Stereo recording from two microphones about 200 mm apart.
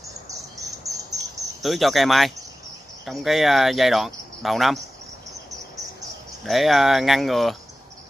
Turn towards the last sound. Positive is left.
turn(degrees=0)  # may be behind; listen again after turning